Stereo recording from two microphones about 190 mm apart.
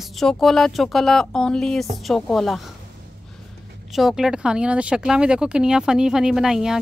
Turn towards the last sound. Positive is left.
turn(degrees=0)  # may be behind; listen again after turning